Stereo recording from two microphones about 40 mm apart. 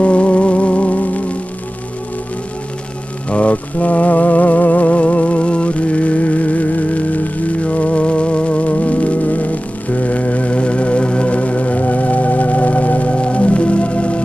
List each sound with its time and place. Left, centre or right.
0.0 s music: left
3.3 s music: left